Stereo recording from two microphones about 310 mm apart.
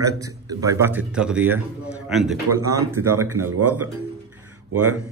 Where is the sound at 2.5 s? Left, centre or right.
Centre.